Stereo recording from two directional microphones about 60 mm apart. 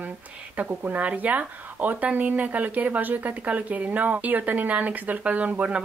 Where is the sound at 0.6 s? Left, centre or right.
Right.